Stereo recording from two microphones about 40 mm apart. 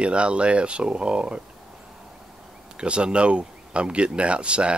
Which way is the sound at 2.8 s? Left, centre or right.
Right.